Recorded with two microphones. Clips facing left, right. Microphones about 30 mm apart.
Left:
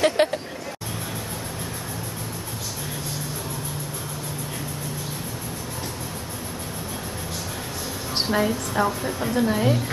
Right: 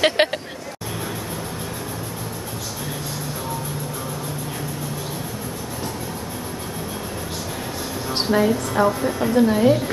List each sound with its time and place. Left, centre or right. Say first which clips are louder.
0.0 s speech: right 2 dB; right
8.1 s a woman's voice: right 4 dB; centre